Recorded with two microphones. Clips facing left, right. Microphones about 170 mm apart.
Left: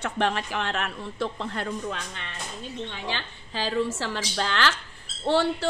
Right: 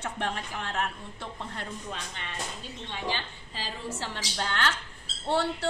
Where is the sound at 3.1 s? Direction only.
90° left.